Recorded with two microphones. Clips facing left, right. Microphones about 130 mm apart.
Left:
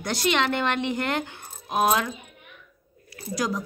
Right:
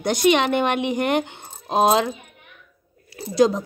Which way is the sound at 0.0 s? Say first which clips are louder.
Right 6 dB; 20° right (ahead or behind).